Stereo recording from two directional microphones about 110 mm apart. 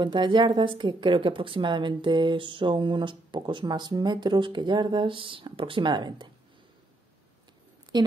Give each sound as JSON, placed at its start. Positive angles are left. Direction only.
{"t": 0.0, "sound": "a woman's voice", "side_deg": -45}
{"t": 7.9, "sound": "a woman's voice", "side_deg": -40}